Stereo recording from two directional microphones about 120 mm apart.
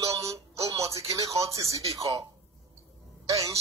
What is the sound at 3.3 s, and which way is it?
Speech, 25° right (ahead or behind).